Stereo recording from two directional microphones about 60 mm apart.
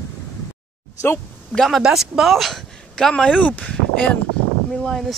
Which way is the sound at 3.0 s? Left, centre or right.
Centre.